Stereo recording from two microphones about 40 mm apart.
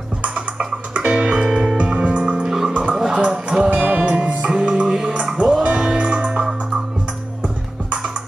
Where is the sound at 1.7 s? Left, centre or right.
Right.